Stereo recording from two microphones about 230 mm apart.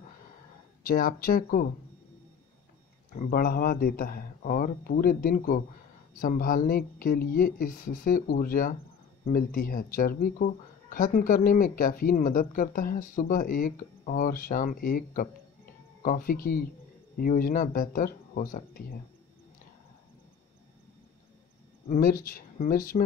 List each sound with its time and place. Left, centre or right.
0.8 s speech: left
3.2 s speech: left
21.8 s speech: left